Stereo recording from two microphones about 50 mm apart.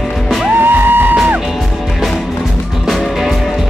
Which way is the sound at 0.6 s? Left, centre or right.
Right.